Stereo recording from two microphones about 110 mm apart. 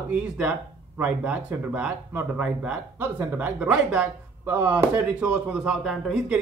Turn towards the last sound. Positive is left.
turn(degrees=0)  # may be behind; listen again after turning